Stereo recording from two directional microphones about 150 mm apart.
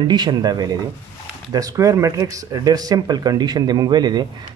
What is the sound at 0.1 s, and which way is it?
Speech, 30° right (ahead or behind).